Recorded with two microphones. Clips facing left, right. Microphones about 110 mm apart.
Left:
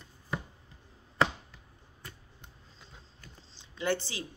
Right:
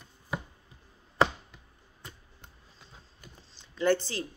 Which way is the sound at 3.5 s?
15° left (ahead or behind).